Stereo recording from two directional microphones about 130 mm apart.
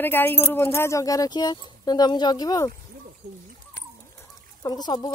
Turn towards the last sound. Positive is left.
turn(degrees=30)  # may be behind; listen again after turning